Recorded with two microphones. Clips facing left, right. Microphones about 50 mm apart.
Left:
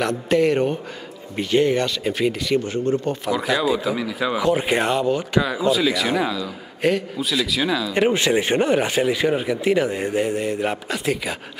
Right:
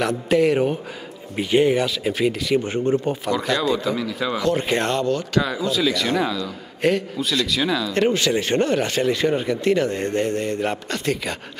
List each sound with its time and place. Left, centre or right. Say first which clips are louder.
0.0 s speech: even; centre
1.3 s speech: right 1 dB; centre
2.6 s speech: right 1 dB; right
3.3 s a man's voice: left 2 dB; centre